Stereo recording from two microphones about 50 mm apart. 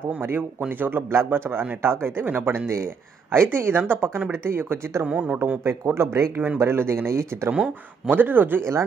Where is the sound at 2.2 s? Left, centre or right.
Right.